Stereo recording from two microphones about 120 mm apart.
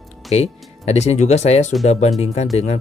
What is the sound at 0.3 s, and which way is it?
Speech, 60° left (ahead or behind).